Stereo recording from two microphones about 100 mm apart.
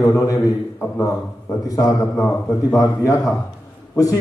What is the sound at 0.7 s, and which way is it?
Speech, 25° left (ahead or behind).